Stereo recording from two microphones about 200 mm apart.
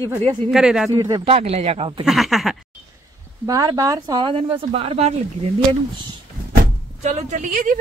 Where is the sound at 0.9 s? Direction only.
20° right (ahead or behind).